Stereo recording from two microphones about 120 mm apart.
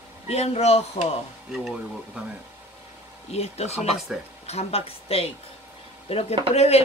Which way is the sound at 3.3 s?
60° left (ahead or behind).